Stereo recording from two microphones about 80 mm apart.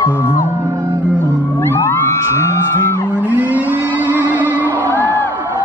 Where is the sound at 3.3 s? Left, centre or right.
Right.